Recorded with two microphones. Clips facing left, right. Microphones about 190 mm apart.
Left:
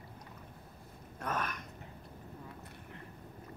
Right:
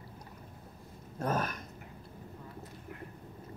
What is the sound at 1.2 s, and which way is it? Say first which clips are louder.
Speech: right 5 dB; 30° right (ahead or behind).